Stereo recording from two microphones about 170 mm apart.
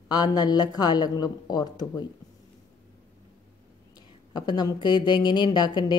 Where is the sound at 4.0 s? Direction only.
25° left (ahead or behind).